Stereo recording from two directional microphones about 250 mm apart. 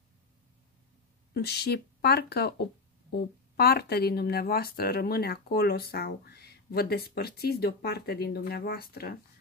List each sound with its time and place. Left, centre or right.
1.3 s speech: left
3.5 s speech: left